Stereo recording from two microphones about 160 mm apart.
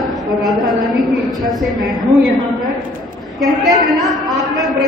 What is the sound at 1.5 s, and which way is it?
Speech, centre (ahead or behind).